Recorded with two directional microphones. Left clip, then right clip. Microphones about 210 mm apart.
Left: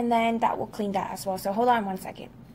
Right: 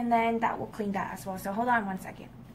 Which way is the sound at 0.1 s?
45° left (ahead or behind).